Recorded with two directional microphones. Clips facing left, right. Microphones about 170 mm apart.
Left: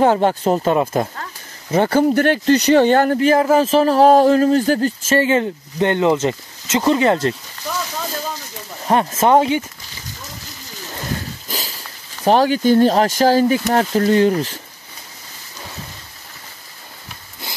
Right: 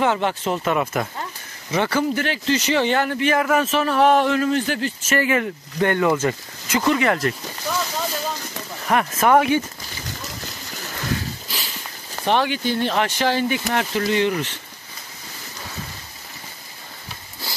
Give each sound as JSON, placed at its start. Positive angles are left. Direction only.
{"t": 0.0, "sound": "a man's voice", "side_deg": 40}
{"t": 1.7, "sound": "a man's voice", "side_deg": 40}
{"t": 8.8, "sound": "speech", "side_deg": 25}
{"t": 11.4, "sound": "a sound", "side_deg": 40}
{"t": 12.3, "sound": "a man's voice", "side_deg": 40}